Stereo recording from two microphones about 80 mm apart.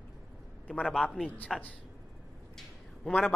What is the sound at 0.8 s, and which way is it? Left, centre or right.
Speech, centre.